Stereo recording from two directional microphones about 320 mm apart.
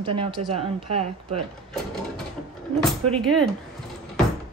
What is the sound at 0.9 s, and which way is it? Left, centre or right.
Speech, right.